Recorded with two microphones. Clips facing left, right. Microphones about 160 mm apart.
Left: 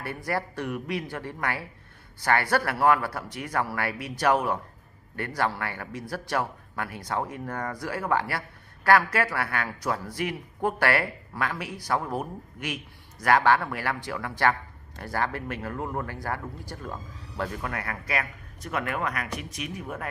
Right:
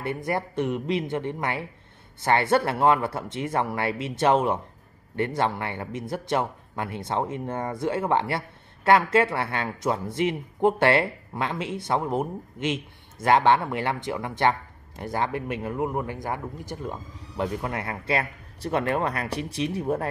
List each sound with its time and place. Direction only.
0.0 s speech: 20° right (ahead or behind)